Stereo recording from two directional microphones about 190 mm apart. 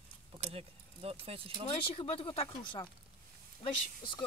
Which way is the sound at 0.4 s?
30° right (ahead or behind).